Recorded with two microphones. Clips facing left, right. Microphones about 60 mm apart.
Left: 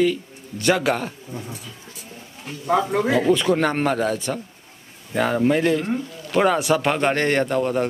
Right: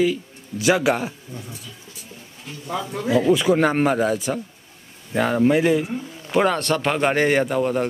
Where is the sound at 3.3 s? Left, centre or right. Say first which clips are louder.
Right 2 dB; centre.